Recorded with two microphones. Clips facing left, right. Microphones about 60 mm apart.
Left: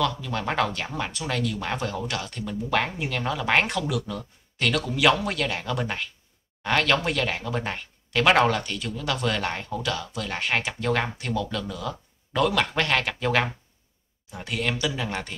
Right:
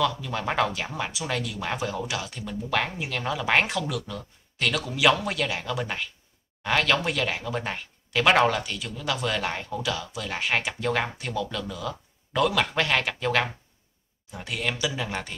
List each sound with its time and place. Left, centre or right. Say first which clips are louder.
0.0 s speech: even; centre